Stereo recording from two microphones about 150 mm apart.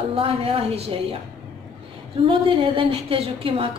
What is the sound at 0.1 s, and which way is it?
Speech, 40° right (ahead or behind).